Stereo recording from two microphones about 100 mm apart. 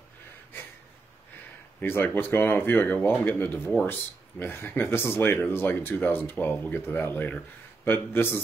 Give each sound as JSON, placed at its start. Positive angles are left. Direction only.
{"t": 1.8, "sound": "speech", "side_deg": 20}